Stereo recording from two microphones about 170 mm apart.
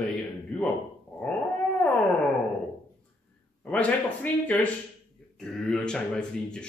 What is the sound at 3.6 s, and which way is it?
Speech, 10° left (ahead or behind).